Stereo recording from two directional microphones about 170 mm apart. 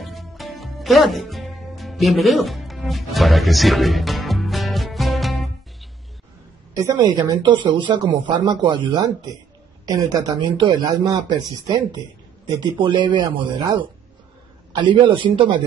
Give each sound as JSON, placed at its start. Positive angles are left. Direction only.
{"t": 0.0, "sound": "music", "side_deg": 0}
{"t": 6.7, "sound": "speech", "side_deg": -20}